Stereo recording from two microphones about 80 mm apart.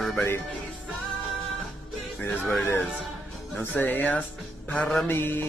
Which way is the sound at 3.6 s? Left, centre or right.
Left.